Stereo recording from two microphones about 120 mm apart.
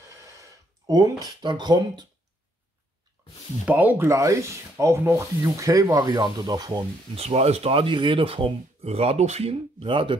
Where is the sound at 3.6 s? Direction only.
15° right (ahead or behind); by 6.9 s 35° right (ahead or behind).